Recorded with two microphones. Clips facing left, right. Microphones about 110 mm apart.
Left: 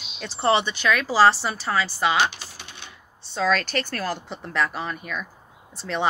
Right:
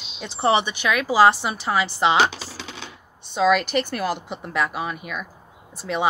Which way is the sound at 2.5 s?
90° right.